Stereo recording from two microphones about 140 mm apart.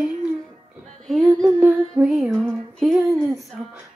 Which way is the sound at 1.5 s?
10° right (ahead or behind).